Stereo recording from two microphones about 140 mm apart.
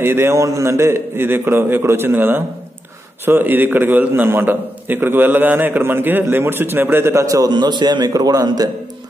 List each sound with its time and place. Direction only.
0.0 s a man's voice: 15° right (ahead or behind)